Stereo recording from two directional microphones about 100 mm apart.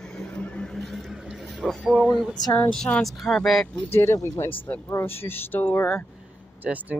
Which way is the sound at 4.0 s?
30° left (ahead or behind).